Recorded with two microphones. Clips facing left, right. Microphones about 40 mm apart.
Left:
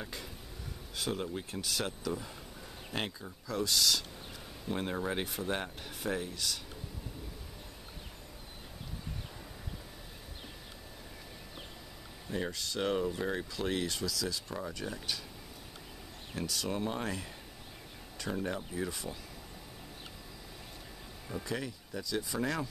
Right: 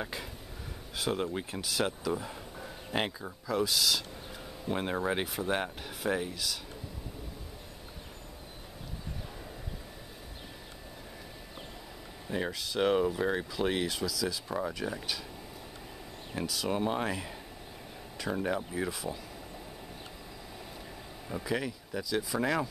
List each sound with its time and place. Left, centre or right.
0.9 s speech: centre
5.2 s speech: centre
6.3 s speech: centre
12.3 s speech: centre
16.3 s speech: centre
16.7 s speech: centre
18.9 s speech: centre
21.3 s speech: centre